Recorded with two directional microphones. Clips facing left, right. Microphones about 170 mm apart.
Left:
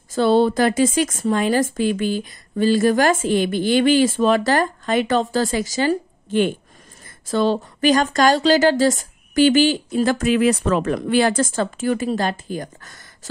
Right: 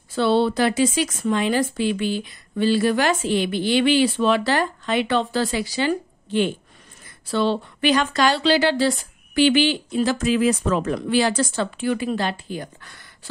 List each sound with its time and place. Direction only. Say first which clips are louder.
0.1 s speech: left 3 dB; 45° left (ahead or behind)